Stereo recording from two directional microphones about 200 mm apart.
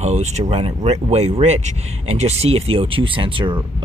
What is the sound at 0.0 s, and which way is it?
Speech, 35° right (ahead or behind).